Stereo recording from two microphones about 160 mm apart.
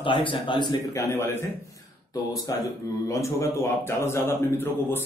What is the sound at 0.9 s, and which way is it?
Speech, 15° left (ahead or behind).